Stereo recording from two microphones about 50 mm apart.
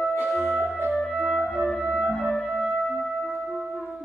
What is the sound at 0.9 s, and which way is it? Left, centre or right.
Clarinet, centre.